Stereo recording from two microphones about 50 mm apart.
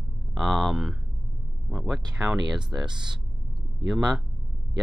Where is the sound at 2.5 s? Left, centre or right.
Centre.